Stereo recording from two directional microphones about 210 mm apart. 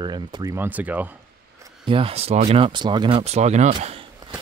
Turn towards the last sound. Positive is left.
turn(degrees=-25)  # may be behind; listen again after turning